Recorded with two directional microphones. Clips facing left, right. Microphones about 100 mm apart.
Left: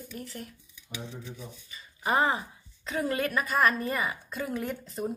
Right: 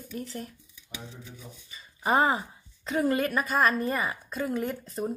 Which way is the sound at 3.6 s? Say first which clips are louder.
Right 1 dB; 30° right (ahead or behind).